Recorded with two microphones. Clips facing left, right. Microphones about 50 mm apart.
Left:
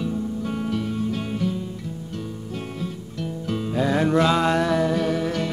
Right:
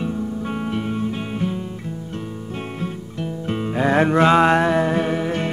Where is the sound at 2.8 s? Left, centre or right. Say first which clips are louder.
Right 3 dB; right.